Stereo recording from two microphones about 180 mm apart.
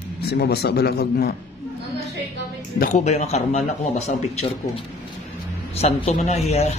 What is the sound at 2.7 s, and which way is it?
Speech, 40° left (ahead or behind).